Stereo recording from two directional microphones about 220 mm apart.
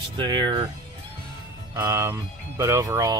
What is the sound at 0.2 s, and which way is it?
Speech, 20° right (ahead or behind).